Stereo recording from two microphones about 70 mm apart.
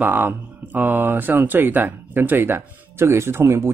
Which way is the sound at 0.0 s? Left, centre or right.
Right.